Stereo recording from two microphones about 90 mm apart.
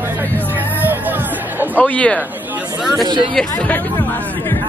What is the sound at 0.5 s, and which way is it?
Music, 20° right (ahead or behind).